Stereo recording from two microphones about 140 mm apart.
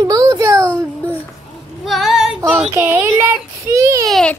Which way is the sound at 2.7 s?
20° right (ahead or behind).